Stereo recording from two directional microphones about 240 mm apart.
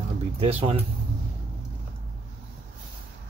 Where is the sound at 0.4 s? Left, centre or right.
Right.